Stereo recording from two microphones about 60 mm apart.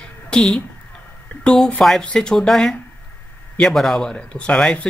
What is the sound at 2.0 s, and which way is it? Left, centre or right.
Speech, centre.